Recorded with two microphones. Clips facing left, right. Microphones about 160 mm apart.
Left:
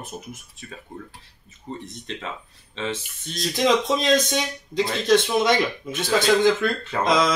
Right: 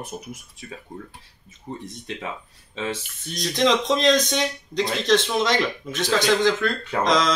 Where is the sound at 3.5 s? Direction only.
5° left (ahead or behind).